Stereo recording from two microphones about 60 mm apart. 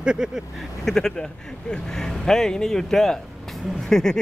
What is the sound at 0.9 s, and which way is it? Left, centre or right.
Speech, centre.